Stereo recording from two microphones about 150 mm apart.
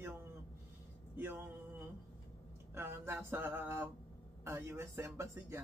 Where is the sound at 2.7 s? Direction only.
15° right (ahead or behind).